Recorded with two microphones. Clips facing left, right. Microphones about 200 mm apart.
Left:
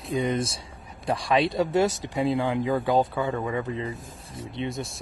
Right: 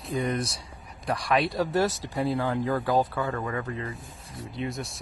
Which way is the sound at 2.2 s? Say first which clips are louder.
Left 2 dB; 15° left (ahead or behind).